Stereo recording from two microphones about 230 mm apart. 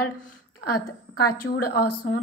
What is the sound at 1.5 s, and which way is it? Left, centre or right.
Speech, left.